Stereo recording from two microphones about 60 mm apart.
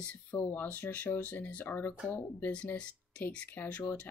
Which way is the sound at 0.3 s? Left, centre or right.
Left.